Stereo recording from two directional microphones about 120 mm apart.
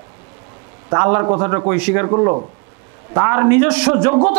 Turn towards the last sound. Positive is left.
turn(degrees=-20)  # may be behind; listen again after turning